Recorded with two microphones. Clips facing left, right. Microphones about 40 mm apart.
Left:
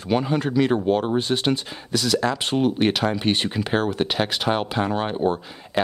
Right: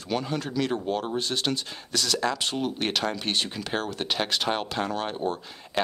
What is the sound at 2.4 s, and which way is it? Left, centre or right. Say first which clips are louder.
Speech: left 8 dB; left.